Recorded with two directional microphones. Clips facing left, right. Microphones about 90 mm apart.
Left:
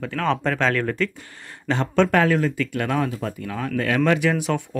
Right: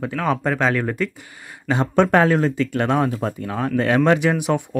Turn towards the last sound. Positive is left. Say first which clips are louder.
# right 3 dB
turn(degrees=-20)  # may be behind; listen again after turning